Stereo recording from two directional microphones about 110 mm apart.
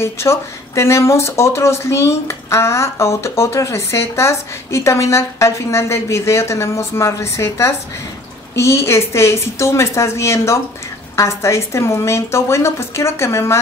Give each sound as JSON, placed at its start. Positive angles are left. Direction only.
{"t": 0.0, "sound": "speech", "side_deg": 25}